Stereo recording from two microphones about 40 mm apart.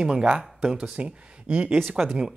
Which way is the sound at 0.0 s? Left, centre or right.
Right.